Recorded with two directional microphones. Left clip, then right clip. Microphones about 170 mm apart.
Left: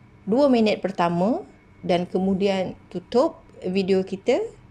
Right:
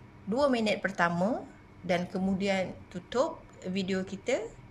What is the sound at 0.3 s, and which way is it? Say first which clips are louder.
Speech: left 8 dB; 25° left (ahead or behind).